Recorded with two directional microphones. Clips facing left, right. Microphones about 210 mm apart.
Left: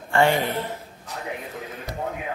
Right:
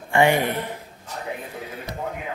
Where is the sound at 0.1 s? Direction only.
15° right (ahead or behind).